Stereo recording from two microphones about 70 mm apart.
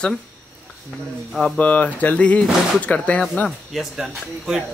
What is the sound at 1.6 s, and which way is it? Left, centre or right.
Speech, left.